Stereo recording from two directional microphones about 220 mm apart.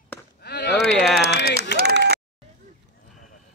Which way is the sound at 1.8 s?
45° right (ahead or behind).